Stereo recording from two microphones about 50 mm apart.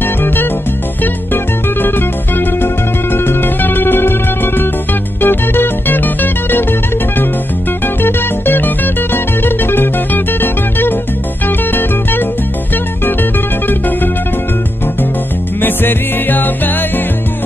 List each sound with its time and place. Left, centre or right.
0.0 s music: left
7.8 s music: left
15.6 s music: left